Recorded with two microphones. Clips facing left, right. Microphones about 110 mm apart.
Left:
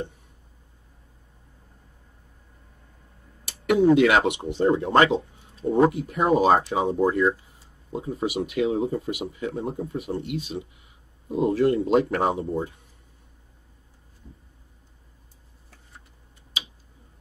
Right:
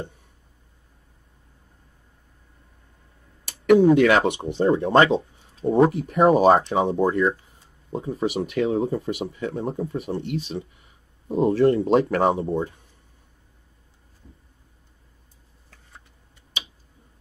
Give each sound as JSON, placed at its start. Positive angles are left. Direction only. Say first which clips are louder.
{"t": 4.0, "sound": "speech", "louder": "right 1 dB", "side_deg": -35}